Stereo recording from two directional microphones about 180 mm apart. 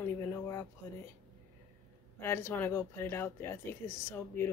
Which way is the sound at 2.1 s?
15° left (ahead or behind).